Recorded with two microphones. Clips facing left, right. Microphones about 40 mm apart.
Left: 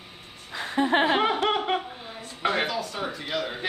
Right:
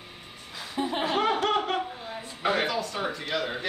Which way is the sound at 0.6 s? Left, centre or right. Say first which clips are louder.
Left 7 dB; left.